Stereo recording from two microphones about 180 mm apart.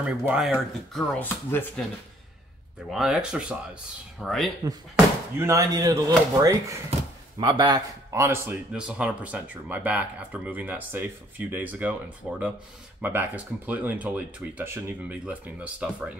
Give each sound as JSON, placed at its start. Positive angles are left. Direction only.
{"t": 0.2, "sound": "speech", "side_deg": -5}
{"t": 1.2, "sound": "speech", "side_deg": 10}
{"t": 2.9, "sound": "speech", "side_deg": -5}
{"t": 4.6, "sound": "speech", "side_deg": -15}